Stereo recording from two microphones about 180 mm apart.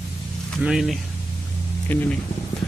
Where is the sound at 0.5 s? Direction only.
Centre (ahead or behind).